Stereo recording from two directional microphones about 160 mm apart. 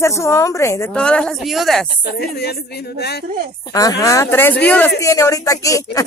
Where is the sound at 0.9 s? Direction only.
5° left (ahead or behind).